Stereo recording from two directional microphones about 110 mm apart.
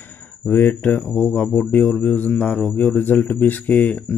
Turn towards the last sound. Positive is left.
turn(degrees=15)  # may be behind; listen again after turning